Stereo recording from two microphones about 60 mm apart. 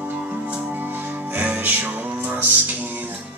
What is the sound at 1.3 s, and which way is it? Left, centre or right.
Music, right.